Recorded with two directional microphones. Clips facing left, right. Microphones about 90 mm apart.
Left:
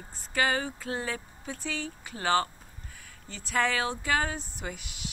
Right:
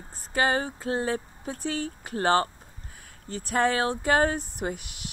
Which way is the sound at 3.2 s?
45° right (ahead or behind).